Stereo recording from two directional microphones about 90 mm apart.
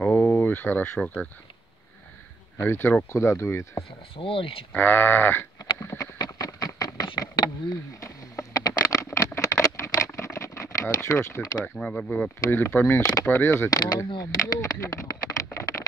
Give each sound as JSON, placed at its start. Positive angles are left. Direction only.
{"t": 0.0, "sound": "a sound", "side_deg": 15}
{"t": 0.9, "sound": "speech", "side_deg": 10}
{"t": 2.5, "sound": "sheep", "side_deg": 25}
{"t": 3.1, "sound": "speech", "side_deg": 30}
{"t": 4.2, "sound": "speech", "side_deg": 85}
{"t": 4.7, "sound": "sheep", "side_deg": 20}
{"t": 5.8, "sound": "a sound", "side_deg": 35}
{"t": 6.1, "sound": "a sound", "side_deg": 45}
{"t": 11.6, "sound": "speech", "side_deg": 15}
{"t": 12.6, "sound": "sheep", "side_deg": 25}
{"t": 13.7, "sound": "speech", "side_deg": 45}
{"t": 14.4, "sound": "a sound", "side_deg": 35}